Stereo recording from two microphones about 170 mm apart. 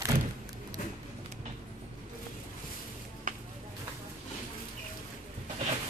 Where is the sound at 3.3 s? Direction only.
50° right (ahead or behind).